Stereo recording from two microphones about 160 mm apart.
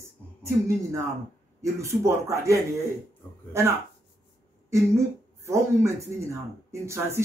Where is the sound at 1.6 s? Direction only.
20° right (ahead or behind).